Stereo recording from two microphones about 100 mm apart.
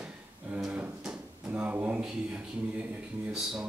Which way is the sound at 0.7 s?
10° right (ahead or behind).